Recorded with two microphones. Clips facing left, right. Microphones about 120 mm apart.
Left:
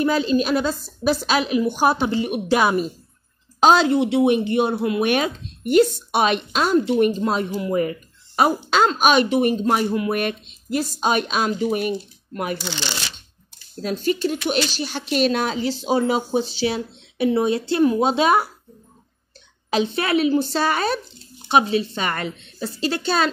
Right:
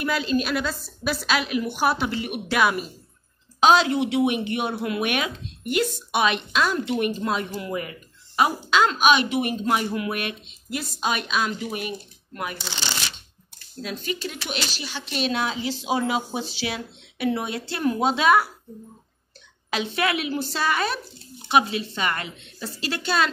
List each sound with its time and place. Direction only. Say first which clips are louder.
0.0 s a woman's voice: left 5 dB; 30° left (ahead or behind)
13.7 s a woman's voice: left 8 dB; 40° left (ahead or behind)
19.7 s speech: left 5 dB; 30° left (ahead or behind)